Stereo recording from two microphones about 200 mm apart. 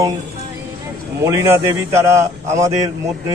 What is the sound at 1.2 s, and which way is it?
A man's voice, 15° right (ahead or behind).